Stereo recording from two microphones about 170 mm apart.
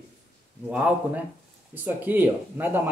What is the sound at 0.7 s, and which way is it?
Speech, 10° right (ahead or behind).